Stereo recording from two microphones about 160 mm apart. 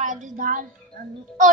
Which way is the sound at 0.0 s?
50° right (ahead or behind).